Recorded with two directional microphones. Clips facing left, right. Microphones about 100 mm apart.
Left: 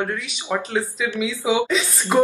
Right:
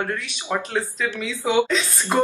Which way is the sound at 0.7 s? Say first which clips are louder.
Left 2 dB; 15° left (ahead or behind).